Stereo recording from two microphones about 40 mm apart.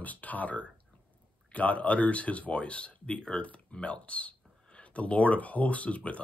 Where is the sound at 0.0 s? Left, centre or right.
Left.